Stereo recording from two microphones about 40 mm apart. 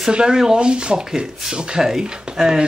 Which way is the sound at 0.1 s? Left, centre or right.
Centre.